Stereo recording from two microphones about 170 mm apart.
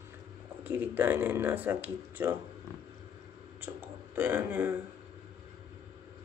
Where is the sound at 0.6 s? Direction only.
10° right (ahead or behind).